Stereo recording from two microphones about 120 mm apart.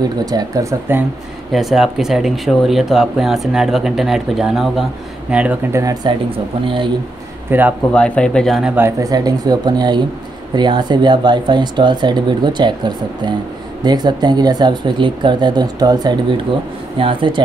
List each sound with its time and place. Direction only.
0.2 s speech: 30° right (ahead or behind)
1.5 s speech: centre (ahead or behind)
5.7 s speech: 25° right (ahead or behind)
6.6 s speech: 45° right (ahead or behind)
7.5 s speech: 15° right (ahead or behind)
7.9 s speech: 10° left (ahead or behind)
8.7 s speech: 20° right (ahead or behind)
9.1 s speech: 35° right (ahead or behind)